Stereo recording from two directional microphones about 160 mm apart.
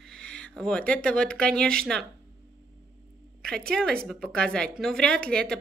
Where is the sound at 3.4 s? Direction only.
5° left (ahead or behind).